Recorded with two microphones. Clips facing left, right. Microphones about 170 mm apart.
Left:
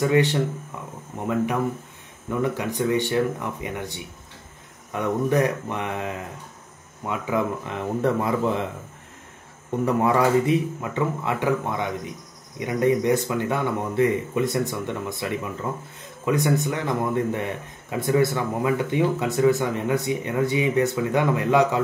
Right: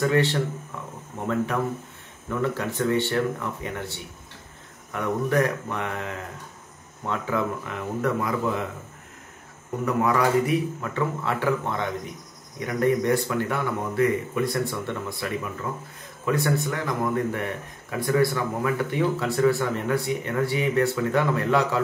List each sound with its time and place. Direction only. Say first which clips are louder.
0.0 s speech: left 2 dB; 15° left (ahead or behind)
9.7 s speech: left 2 dB; 30° left (ahead or behind)